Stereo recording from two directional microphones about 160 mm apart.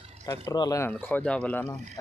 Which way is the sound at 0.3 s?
20° left (ahead or behind).